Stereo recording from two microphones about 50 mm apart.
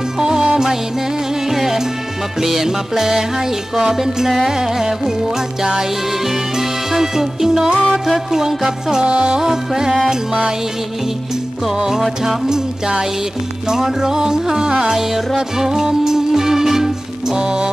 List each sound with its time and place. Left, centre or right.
0.2 s music: centre
1.5 s music: centre
11.6 s music: centre